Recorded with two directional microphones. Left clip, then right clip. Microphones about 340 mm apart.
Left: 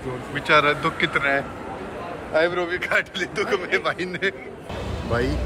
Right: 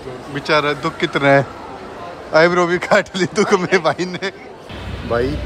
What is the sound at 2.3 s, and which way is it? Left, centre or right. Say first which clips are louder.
Speech: right 9 dB; right.